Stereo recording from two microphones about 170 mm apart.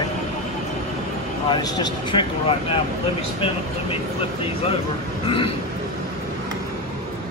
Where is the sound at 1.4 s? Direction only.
25° left (ahead or behind).